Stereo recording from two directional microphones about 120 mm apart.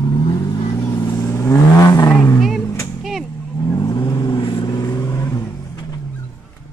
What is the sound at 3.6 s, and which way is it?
Vehicle, 30° left (ahead or behind).